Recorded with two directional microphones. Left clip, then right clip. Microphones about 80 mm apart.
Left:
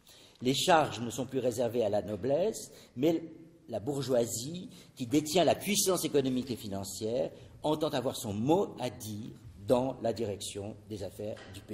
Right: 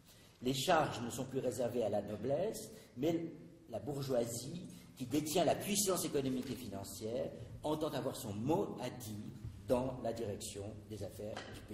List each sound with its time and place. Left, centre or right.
0.4 s a man's voice: left